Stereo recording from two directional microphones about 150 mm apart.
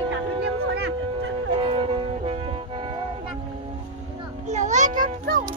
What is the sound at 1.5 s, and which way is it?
Music, 35° right (ahead or behind).